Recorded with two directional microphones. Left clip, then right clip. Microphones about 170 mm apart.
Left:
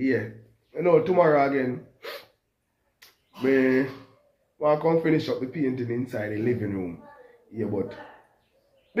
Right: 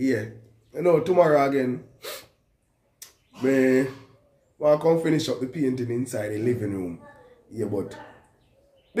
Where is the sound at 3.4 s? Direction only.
15° right (ahead or behind).